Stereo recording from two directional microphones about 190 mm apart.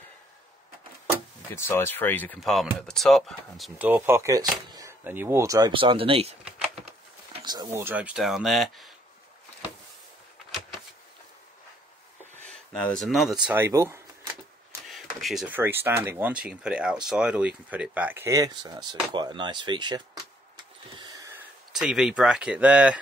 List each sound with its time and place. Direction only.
1.5 s speech: 15° left (ahead or behind)
12.7 s speech: 5° left (ahead or behind); by 14.3 s 15° right (ahead or behind)
14.9 s speech: centre (ahead or behind); by 20.2 s 20° right (ahead or behind)
21.0 s a sound: 20° right (ahead or behind)
21.7 s speech: centre (ahead or behind)